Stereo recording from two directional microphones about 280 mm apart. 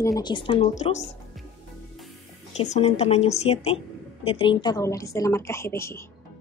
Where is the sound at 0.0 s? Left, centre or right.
Centre.